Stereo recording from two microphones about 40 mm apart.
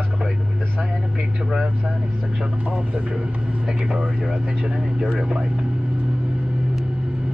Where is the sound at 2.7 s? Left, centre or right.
Right.